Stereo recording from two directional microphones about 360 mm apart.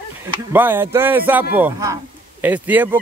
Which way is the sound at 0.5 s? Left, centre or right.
Centre.